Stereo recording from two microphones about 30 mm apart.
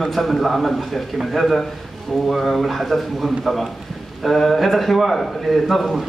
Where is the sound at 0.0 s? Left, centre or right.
Centre.